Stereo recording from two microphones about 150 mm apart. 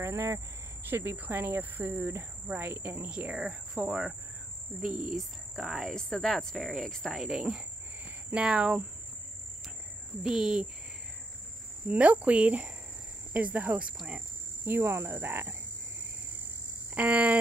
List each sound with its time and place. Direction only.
0.0 s speech: 20° right (ahead or behind)
5.1 s speech: centre (ahead or behind)
10.2 s speech: 5° right (ahead or behind)
11.9 s speech: 10° right (ahead or behind)
16.9 s speech: 10° right (ahead or behind)